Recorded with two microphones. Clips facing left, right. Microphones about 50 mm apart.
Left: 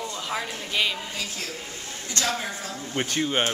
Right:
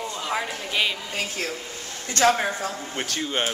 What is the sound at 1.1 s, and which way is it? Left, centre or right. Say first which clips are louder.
Speech: right 4 dB; right.